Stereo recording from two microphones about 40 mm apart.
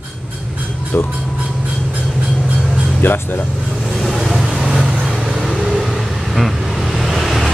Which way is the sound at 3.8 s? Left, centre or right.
Centre.